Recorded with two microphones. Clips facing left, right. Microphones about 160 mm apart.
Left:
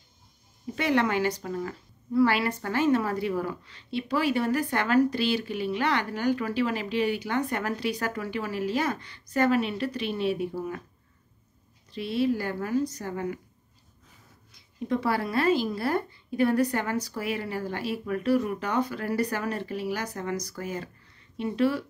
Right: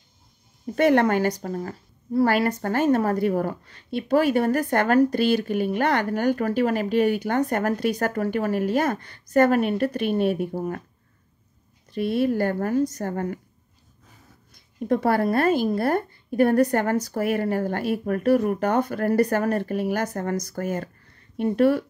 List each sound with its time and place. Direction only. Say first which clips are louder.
0.7 s a woman's voice: right 6 dB; 50° right (ahead or behind)
11.9 s a woman's voice: right 4 dB; 50° right (ahead or behind)
14.5 s a woman's voice: right 5 dB; 50° right (ahead or behind)